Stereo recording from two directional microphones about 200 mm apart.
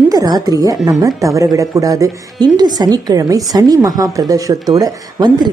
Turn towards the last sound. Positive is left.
turn(degrees=-20)  # may be behind; listen again after turning